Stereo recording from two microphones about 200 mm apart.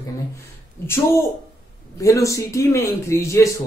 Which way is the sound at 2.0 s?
15° left (ahead or behind).